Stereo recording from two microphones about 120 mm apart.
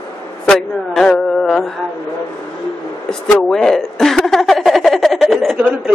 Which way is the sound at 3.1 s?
5° left (ahead or behind).